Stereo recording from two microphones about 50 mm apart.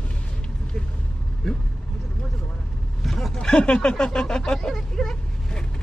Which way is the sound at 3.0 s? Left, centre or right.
Centre.